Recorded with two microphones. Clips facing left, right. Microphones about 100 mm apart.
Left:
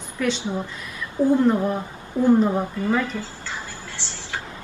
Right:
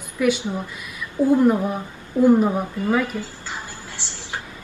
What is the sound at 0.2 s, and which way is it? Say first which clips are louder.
A woman's voice: right 3 dB; 10° right (ahead or behind).